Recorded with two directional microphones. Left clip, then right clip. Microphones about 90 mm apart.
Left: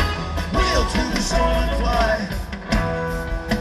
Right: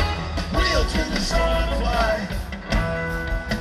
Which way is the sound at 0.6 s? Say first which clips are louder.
Left 2 dB; 30° right (ahead or behind).